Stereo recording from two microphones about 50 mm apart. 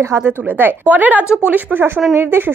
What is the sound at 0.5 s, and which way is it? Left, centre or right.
A woman's voice, right.